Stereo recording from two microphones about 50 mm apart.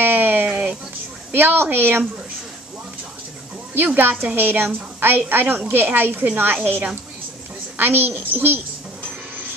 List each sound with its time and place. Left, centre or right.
0.0 s sheep: right
0.5 s a sound: centre
1.3 s a woman's voice: right
3.7 s a woman's voice: right